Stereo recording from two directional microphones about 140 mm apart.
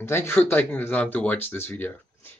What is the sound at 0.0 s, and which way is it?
Speech, 15° left (ahead or behind).